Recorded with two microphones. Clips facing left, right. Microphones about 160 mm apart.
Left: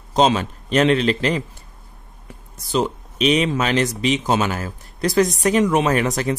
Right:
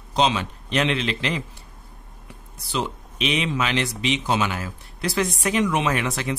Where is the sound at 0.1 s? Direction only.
45° left (ahead or behind).